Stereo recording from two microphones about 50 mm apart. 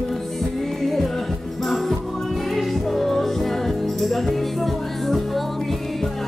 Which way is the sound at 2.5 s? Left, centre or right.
Centre.